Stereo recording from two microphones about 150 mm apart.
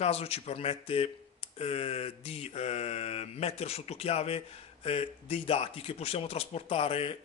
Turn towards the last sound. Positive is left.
turn(degrees=40)  # may be behind; listen again after turning